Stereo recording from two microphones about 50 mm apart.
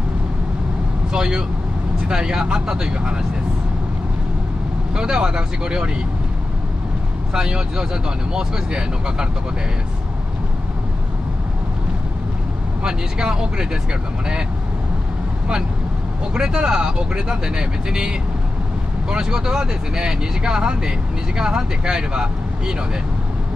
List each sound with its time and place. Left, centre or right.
1.1 s speech: centre
4.9 s speech: centre
7.3 s speech: centre
12.8 s speech: centre
16.3 s speech: centre